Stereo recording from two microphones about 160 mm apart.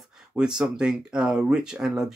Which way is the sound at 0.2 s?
5° right (ahead or behind).